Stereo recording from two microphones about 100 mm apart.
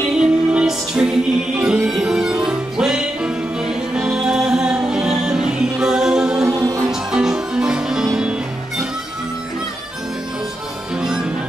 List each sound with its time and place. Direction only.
0.2 s music: 10° right (ahead or behind)
6.4 s music: 35° right (ahead or behind)
6.9 s music: 5° right (ahead or behind)
11.0 s music: 5° right (ahead or behind)